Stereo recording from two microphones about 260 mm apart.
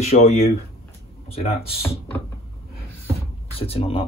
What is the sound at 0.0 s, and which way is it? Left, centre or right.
Speech, left.